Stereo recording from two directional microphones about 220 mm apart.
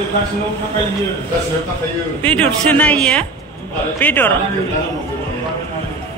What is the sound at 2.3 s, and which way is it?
A man's voice, 5° left (ahead or behind).